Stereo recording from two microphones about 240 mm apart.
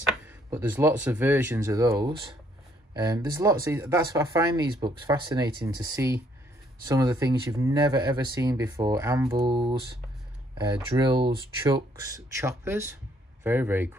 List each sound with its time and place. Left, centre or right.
0.5 s speech: centre
11.0 s speech: centre